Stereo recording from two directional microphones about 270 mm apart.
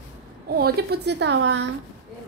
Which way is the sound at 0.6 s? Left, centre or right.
Right.